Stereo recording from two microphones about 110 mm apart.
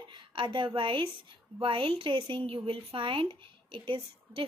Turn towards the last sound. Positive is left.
turn(degrees=-50)  # may be behind; listen again after turning